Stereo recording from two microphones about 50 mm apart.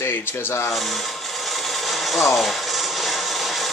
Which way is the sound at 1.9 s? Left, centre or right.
Centre.